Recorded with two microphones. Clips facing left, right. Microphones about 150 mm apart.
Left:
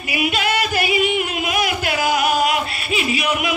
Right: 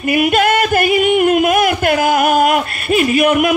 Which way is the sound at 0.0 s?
50° right (ahead or behind).